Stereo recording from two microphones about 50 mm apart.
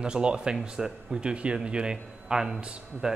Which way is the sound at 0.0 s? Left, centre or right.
Centre.